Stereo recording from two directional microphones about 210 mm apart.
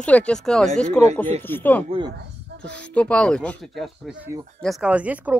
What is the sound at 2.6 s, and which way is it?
Speech, 5° left (ahead or behind).